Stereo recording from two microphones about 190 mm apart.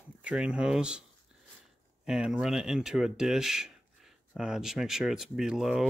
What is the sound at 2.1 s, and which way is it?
Speech, 5° right (ahead or behind).